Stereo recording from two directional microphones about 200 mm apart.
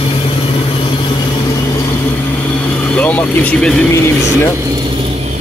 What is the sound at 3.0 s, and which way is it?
Speech, 5° left (ahead or behind).